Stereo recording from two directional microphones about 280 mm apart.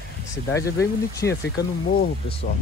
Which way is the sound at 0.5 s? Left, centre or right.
Centre.